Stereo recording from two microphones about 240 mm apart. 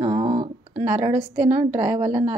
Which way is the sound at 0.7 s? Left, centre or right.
Centre.